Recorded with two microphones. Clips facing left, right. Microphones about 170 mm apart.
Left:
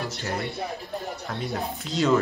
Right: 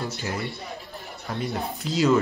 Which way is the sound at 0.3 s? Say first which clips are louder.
Left 2 dB; 65° left (ahead or behind).